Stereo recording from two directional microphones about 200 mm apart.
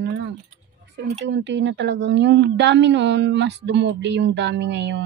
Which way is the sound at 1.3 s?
65° right (ahead or behind).